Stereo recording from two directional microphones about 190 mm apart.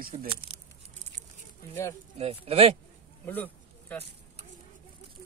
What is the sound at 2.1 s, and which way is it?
Speech, 30° right (ahead or behind).